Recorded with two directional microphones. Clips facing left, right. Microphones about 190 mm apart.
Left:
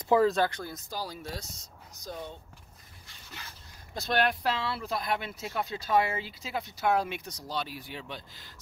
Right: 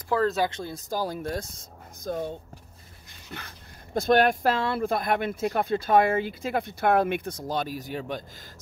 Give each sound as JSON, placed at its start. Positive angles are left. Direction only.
{"t": 0.1, "sound": "speech", "side_deg": 15}
{"t": 0.5, "sound": "speech", "side_deg": -25}
{"t": 0.8, "sound": "speech", "side_deg": -50}
{"t": 3.3, "sound": "speech", "side_deg": -55}